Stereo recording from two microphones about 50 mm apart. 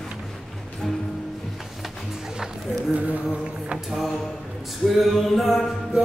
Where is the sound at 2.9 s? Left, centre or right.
Right.